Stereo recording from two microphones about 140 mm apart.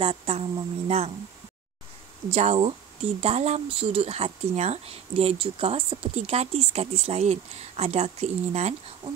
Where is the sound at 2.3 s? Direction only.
50° right (ahead or behind).